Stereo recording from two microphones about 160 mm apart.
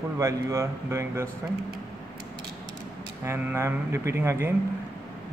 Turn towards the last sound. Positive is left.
turn(degrees=-15)  # may be behind; listen again after turning